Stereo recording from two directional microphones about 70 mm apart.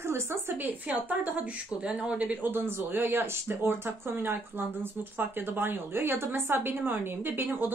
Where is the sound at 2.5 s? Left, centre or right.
Right.